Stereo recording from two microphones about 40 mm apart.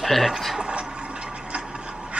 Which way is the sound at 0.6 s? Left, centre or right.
Right.